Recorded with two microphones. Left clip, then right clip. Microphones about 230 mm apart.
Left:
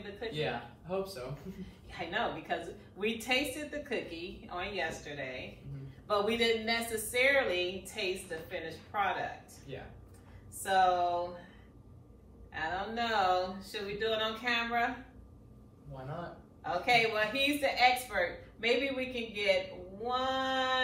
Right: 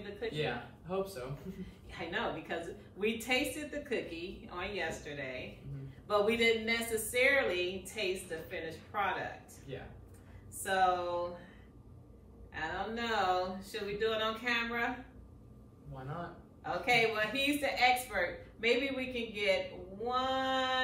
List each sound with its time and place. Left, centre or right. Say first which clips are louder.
0.4 s speech: left 3 dB; centre
1.6 s a woman's voice: left 3 dB; centre
10.6 s a woman's voice: left 3 dB; centre
12.5 s a woman's voice: left 3 dB; centre
16.6 s a woman's voice: left 2 dB; centre